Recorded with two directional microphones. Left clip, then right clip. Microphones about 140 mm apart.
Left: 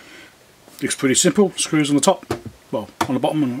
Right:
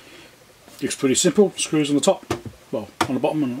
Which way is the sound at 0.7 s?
25° left (ahead or behind).